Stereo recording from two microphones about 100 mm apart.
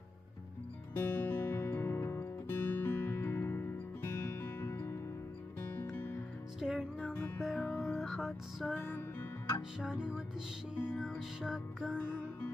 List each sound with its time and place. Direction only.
0.9 s music: 20° left (ahead or behind)
6.6 s music: 5° right (ahead or behind)
7.2 s music: 20° left (ahead or behind)
7.8 s music: centre (ahead or behind)
8.7 s music: 20° left (ahead or behind)
9.8 s music: 5° right (ahead or behind)